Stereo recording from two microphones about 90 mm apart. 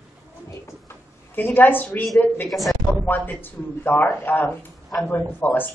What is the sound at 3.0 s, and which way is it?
A man's voice, 20° left (ahead or behind).